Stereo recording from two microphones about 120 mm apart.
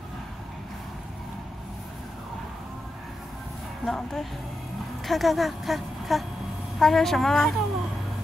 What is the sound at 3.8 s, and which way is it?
A woman's voice, centre (ahead or behind).